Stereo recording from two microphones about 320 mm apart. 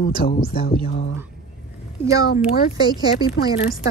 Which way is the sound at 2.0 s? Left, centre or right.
Centre.